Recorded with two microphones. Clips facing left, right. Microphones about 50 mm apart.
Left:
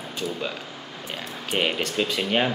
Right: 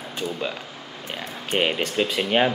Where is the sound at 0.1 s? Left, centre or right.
Centre.